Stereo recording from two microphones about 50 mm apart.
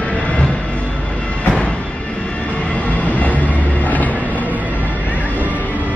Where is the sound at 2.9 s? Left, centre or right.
Left.